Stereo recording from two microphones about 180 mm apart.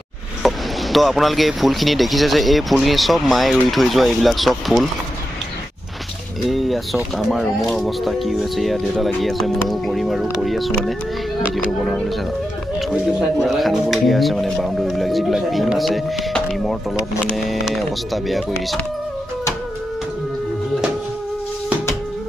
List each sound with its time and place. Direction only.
0.4 s speech: centre (ahead or behind)
6.5 s speech: centre (ahead or behind)